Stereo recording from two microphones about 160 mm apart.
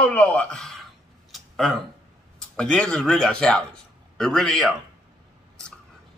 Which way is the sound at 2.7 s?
5° left (ahead or behind).